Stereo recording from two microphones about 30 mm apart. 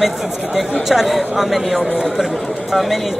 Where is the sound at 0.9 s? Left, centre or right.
Centre.